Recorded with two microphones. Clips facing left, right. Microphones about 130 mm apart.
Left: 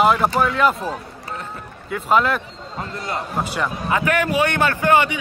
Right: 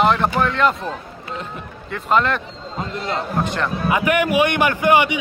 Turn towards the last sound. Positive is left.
turn(degrees=-15)  # may be behind; listen again after turning